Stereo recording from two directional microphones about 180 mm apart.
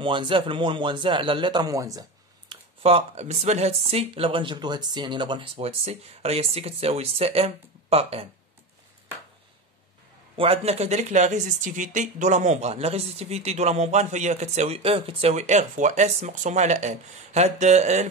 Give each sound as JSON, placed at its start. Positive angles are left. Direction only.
{"t": 0.0, "sound": "a man's voice", "side_deg": -30}
{"t": 2.5, "sound": "speech", "side_deg": -35}
{"t": 10.3, "sound": "speech", "side_deg": -30}